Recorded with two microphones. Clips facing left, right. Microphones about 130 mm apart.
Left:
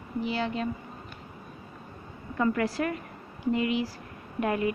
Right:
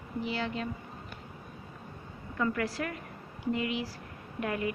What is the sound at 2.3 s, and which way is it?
Speech, 35° left (ahead or behind).